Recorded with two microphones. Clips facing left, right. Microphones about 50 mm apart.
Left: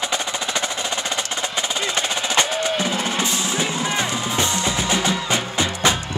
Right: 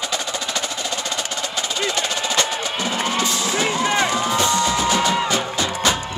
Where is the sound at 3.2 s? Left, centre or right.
Left.